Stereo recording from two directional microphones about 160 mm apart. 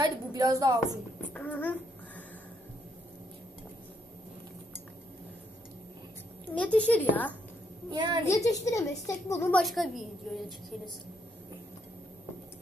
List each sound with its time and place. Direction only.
0.0 s a woman's voice: 20° right (ahead or behind)
1.3 s a sound: 10° left (ahead or behind)
6.5 s a woman's voice: 10° left (ahead or behind)
7.9 s a woman's voice: 25° right (ahead or behind)
8.3 s a woman's voice: 20° left (ahead or behind)
9.5 s a woman's voice: centre (ahead or behind)